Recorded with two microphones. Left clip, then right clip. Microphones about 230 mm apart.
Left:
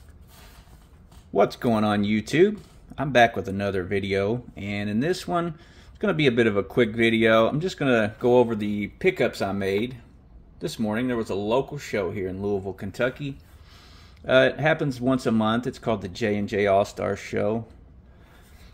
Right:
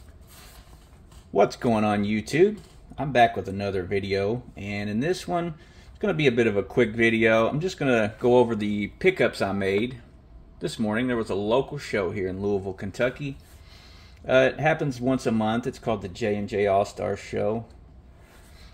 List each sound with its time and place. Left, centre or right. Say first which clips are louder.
1.3 s speech: even; centre